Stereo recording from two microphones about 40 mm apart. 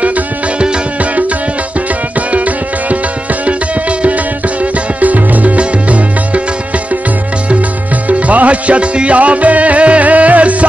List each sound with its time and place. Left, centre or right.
2.1 s music: right
5.0 s music: right
8.1 s music: right